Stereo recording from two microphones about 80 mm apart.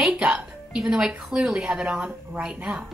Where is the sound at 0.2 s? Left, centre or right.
Centre.